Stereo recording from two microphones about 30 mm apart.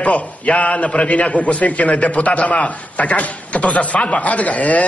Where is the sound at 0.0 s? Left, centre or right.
Left.